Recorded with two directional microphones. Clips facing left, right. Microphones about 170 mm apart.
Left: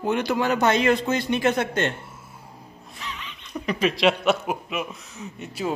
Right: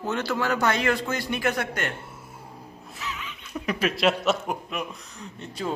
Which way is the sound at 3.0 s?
5° right (ahead or behind).